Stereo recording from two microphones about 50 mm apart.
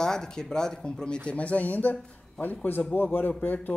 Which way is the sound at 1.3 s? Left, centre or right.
Left.